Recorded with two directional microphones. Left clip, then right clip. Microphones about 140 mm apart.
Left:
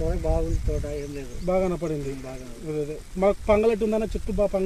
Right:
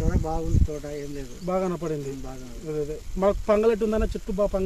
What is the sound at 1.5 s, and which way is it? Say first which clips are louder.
Speech: left 3 dB; 15° left (ahead or behind).